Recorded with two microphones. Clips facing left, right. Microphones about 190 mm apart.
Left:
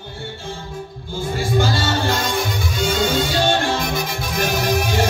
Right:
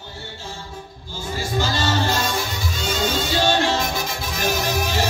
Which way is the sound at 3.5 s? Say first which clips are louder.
Even; 50° left (ahead or behind).